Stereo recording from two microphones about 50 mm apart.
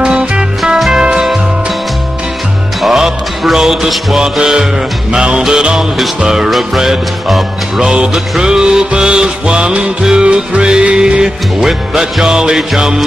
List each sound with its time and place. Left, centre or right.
0.9 s music: centre
2.8 s music: centre